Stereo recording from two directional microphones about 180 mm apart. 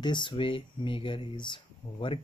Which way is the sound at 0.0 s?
25° left (ahead or behind).